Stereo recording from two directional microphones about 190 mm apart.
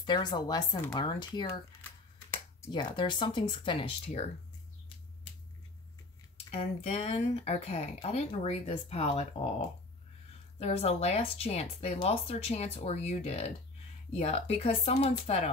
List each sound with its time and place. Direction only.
0.0 s speech: 25° left (ahead or behind)
2.7 s speech: 25° left (ahead or behind)
6.5 s speech: 30° left (ahead or behind)
10.6 s speech: 35° left (ahead or behind)